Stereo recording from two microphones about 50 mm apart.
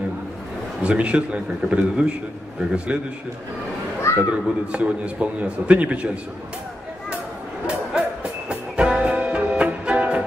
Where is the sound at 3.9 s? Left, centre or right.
Left.